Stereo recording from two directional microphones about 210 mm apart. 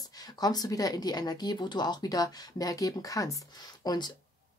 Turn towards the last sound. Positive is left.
turn(degrees=20)  # may be behind; listen again after turning